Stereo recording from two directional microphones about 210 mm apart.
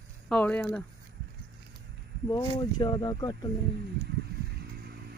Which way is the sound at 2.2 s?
20° left (ahead or behind).